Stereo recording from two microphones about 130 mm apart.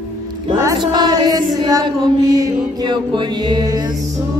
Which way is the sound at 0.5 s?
30° right (ahead or behind).